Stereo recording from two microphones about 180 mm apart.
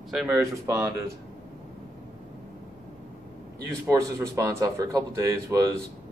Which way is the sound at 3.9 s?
15° right (ahead or behind).